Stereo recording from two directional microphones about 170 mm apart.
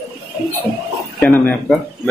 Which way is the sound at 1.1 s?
5° left (ahead or behind).